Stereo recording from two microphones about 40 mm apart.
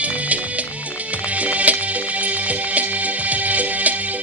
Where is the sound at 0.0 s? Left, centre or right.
Right.